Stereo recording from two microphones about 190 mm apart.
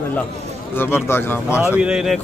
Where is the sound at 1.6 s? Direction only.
5° right (ahead or behind).